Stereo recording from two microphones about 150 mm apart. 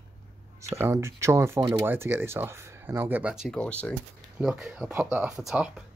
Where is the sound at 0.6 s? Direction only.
15° right (ahead or behind).